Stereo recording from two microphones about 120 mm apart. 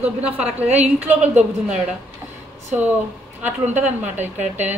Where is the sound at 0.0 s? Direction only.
10° right (ahead or behind).